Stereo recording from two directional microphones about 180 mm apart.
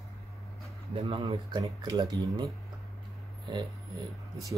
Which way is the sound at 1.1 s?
25° right (ahead or behind).